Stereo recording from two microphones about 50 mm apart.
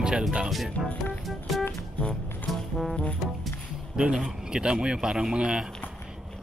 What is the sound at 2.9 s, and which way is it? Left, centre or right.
Music, centre.